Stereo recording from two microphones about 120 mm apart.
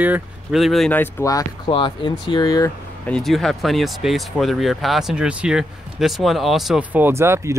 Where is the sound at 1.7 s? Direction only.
40° left (ahead or behind).